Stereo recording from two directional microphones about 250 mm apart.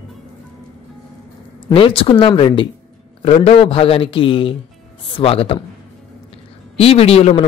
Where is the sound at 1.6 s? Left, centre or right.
Left.